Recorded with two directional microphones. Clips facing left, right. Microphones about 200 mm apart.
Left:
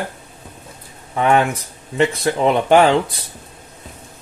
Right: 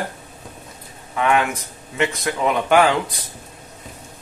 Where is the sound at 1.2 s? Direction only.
35° left (ahead or behind).